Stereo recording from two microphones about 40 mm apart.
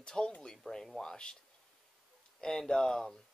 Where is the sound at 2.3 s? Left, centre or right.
Centre.